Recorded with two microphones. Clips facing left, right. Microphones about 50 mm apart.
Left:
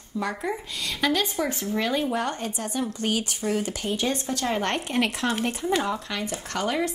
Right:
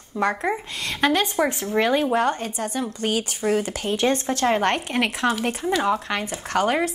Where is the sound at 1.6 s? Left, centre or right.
Right.